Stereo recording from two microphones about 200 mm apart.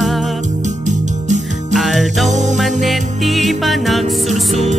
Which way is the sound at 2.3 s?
35° right (ahead or behind).